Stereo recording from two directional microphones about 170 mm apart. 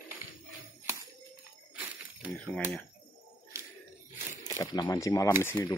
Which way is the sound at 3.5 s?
15° right (ahead or behind).